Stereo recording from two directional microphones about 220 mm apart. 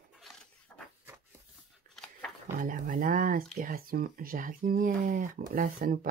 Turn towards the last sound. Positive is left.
turn(degrees=-40)  # may be behind; listen again after turning